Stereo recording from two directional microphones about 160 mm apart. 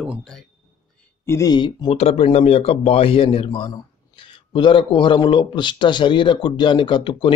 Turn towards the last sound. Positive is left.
turn(degrees=30)  # may be behind; listen again after turning